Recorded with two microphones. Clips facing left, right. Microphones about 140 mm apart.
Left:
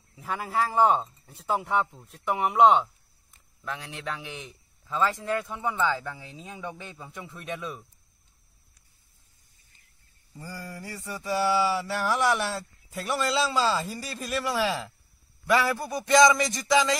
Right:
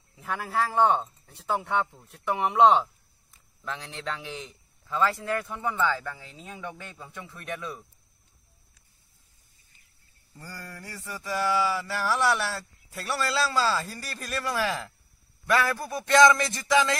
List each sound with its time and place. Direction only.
0.2 s speech: 5° left (ahead or behind)
10.3 s speech: 10° left (ahead or behind)
10.8 s a sound: 20° left (ahead or behind)
11.9 s speech: 15° left (ahead or behind)